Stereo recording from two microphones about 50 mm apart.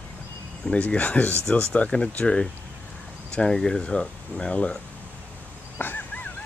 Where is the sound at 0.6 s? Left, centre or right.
Left.